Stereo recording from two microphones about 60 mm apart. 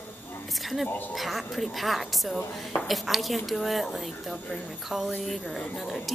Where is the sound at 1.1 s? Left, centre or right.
Centre.